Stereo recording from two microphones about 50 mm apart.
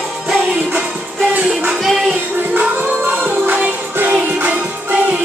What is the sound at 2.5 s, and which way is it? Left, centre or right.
Music, right.